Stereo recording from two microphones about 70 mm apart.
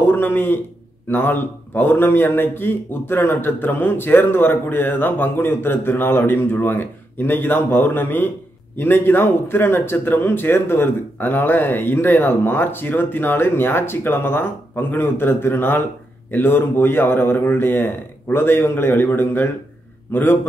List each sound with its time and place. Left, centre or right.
0.0 s a man's voice: left